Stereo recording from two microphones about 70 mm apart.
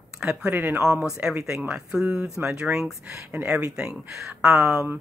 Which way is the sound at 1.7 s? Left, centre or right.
Centre.